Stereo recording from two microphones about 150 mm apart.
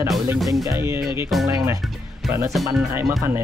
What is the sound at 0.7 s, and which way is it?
Speech, 20° right (ahead or behind).